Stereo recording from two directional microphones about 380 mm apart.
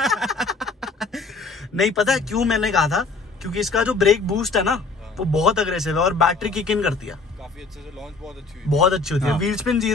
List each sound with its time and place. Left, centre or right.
0.0 s speech: centre
8.6 s a man's voice: centre